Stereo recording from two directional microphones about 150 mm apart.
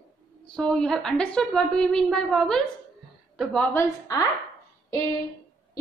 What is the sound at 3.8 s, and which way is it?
Speech, 25° left (ahead or behind).